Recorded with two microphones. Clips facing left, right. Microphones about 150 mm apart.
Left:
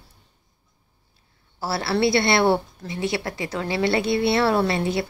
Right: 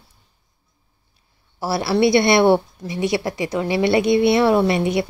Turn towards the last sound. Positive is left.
turn(degrees=-20)  # may be behind; listen again after turning